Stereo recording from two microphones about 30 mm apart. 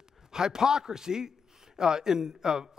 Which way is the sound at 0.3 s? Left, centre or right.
Right.